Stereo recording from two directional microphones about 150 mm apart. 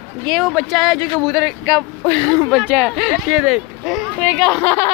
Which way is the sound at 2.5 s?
5° right (ahead or behind).